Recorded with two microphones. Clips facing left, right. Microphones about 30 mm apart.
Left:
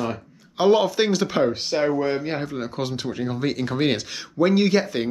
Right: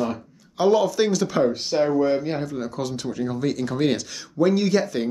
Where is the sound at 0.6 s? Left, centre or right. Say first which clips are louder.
Left 1 dB; left.